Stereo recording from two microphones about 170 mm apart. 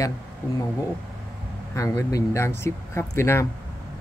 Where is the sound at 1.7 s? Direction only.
20° left (ahead or behind).